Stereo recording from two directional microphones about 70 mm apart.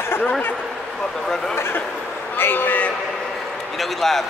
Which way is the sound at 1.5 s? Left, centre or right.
Left.